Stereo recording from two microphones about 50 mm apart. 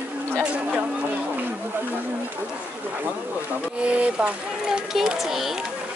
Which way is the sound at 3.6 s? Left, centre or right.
Right.